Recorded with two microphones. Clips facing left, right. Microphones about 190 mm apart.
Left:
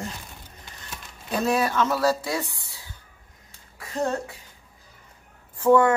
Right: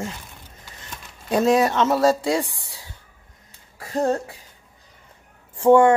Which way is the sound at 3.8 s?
35° right (ahead or behind).